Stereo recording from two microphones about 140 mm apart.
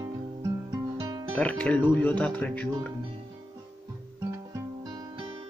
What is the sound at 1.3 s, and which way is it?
Speech, 10° left (ahead or behind).